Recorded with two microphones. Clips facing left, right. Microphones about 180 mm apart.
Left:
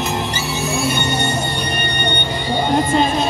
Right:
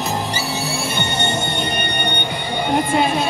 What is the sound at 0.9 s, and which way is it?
Music, 25° right (ahead or behind).